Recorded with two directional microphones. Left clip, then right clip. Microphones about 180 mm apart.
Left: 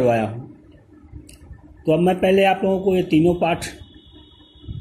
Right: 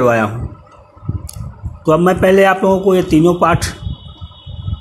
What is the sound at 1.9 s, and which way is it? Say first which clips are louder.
Speech: right 6 dB; 45° right (ahead or behind).